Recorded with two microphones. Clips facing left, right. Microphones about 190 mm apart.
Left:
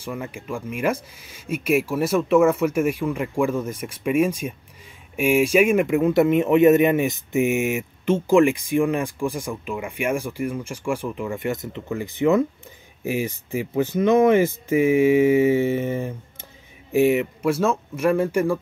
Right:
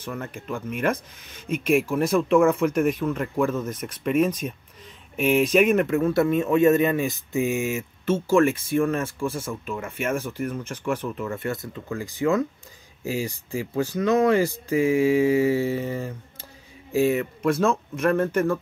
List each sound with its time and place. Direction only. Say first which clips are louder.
0.0 s a man's voice: left 2 dB; 10° left (ahead or behind)